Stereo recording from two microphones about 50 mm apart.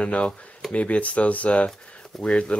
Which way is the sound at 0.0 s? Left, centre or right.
Left.